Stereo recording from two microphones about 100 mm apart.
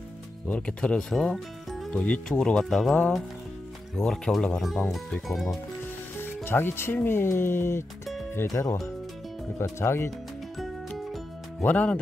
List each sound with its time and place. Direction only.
0.5 s speech: 10° left (ahead or behind)
2.0 s speech: 15° left (ahead or behind)
6.1 s speech: 20° left (ahead or behind)
8.5 s speech: 35° left (ahead or behind)
9.6 s speech: 25° left (ahead or behind)
11.6 s speech: 15° left (ahead or behind)